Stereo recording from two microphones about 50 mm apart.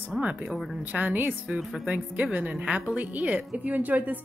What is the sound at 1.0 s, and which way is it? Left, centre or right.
Speech, right.